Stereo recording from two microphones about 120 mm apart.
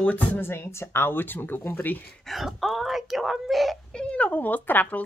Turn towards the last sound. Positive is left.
turn(degrees=15)  # may be behind; listen again after turning